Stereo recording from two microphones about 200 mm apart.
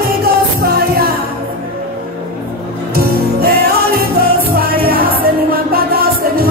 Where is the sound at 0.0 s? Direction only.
50° right (ahead or behind).